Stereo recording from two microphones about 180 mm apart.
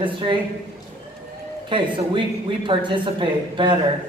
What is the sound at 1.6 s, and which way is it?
A woman's voice, 25° right (ahead or behind).